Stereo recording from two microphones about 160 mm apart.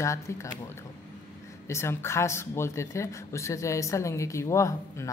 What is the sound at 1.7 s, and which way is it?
Speech, 15° left (ahead or behind).